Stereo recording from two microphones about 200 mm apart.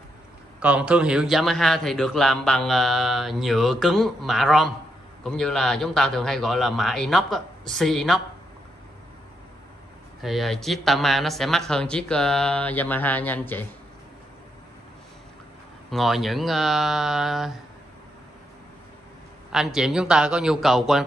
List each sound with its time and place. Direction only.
0.6 s a man's voice: 5° right (ahead or behind)
10.2 s a man's voice: centre (ahead or behind)
15.9 s a man's voice: centre (ahead or behind)
19.5 s a man's voice: 5° right (ahead or behind)